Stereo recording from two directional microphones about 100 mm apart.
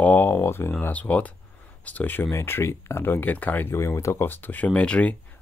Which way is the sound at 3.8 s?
30° left (ahead or behind).